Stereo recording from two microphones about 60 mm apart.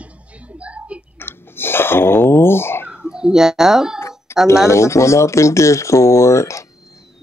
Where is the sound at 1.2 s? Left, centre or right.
Left.